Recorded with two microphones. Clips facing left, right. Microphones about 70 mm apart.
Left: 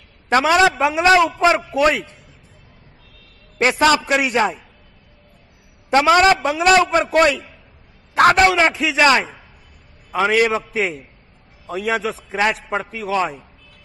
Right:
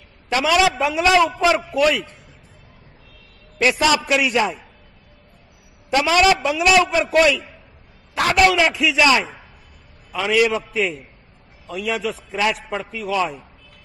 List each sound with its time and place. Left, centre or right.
0.3 s a man's voice: left
3.5 s a man's voice: left
3.8 s a man's voice: left
5.9 s a man's voice: left